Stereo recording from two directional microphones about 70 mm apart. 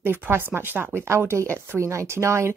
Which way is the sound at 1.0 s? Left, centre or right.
Right.